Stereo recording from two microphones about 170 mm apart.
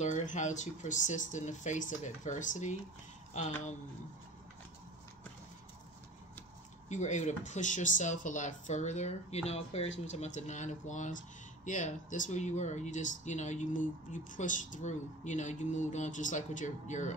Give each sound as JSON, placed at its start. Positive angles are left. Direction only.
{"t": 0.0, "sound": "speech", "side_deg": 45}
{"t": 6.9, "sound": "speech", "side_deg": 45}